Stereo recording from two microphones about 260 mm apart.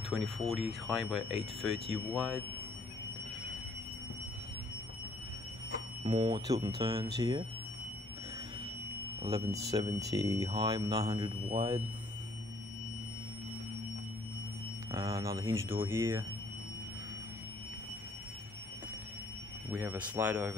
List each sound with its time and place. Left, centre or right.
0.1 s speech: centre
1.3 s speech: left
2.1 s speech: centre
6.0 s speech: centre
9.2 s speech: centre
14.9 s speech: centre
19.7 s speech: centre